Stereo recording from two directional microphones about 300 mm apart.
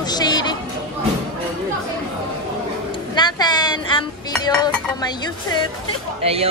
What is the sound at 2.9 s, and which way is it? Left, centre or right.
Chink, centre.